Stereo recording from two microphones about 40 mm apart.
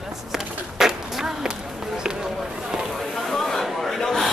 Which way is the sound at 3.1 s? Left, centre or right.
Centre.